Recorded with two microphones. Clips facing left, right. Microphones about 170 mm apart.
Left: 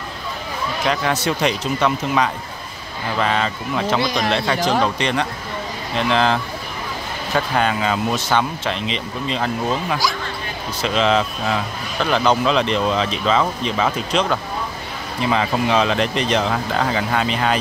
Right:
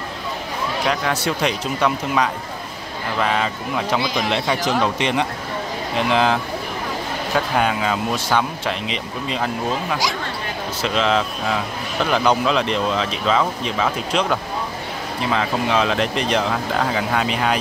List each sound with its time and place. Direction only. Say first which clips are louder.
0.8 s a man's voice: left 2 dB; 5° right (ahead or behind)